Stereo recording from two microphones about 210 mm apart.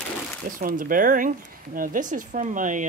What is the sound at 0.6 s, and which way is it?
Speech, 40° right (ahead or behind).